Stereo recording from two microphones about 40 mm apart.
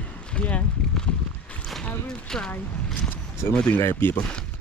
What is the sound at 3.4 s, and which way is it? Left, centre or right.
Speech, left.